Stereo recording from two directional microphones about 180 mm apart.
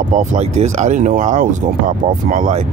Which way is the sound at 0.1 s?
40° right (ahead or behind).